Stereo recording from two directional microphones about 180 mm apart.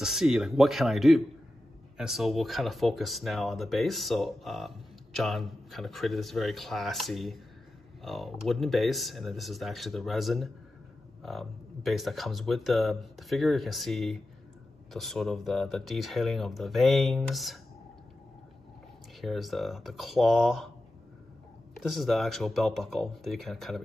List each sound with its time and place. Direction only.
0.0 s speech: 5° right (ahead or behind)
19.2 s speech: centre (ahead or behind)
21.8 s speech: centre (ahead or behind)